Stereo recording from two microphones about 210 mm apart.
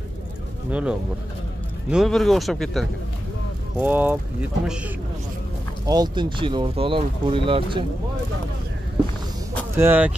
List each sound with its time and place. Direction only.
0.7 s speech: 5° right (ahead or behind)
5.9 s speech: 20° right (ahead or behind)
9.8 s speech: 10° right (ahead or behind)